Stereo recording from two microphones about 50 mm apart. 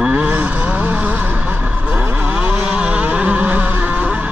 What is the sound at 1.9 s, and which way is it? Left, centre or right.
Vehicle, right.